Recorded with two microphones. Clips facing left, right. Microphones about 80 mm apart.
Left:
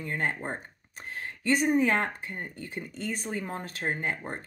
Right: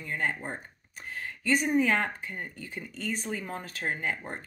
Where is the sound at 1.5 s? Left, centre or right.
Left.